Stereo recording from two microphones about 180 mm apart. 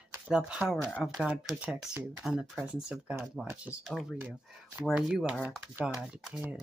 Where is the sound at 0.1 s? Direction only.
5° right (ahead or behind).